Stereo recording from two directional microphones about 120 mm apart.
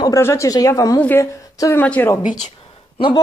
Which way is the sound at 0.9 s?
15° left (ahead or behind).